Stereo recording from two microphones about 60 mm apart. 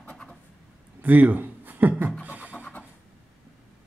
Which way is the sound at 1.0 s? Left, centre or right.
Right.